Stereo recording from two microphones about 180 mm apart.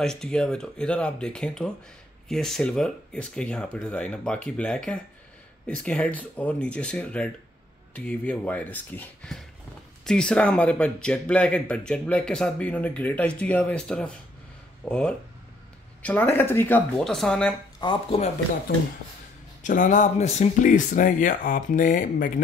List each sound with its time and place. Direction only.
0.0 s speech: 5° left (ahead or behind)
17.8 s speech: 25° left (ahead or behind)
19.6 s speech: 45° left (ahead or behind)